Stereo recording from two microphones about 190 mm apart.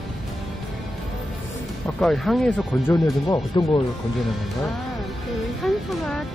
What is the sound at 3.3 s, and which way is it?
Speech, 25° left (ahead or behind).